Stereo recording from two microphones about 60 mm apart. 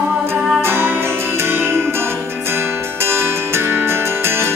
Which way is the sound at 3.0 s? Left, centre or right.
Right.